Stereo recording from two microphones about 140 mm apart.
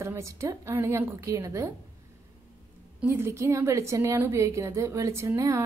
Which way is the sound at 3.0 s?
20° right (ahead or behind).